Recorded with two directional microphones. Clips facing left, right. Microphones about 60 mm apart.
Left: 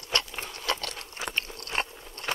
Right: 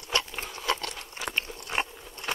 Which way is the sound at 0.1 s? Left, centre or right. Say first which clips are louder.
Right 1 dB; centre.